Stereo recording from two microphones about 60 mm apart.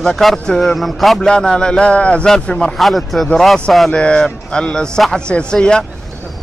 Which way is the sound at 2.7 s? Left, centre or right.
Centre.